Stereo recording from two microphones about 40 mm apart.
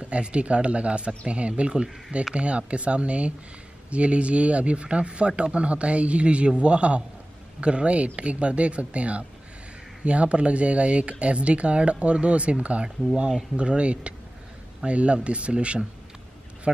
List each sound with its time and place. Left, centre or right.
0.0 s a man's voice: right